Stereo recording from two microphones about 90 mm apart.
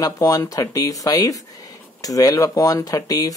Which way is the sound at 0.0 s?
40° left (ahead or behind).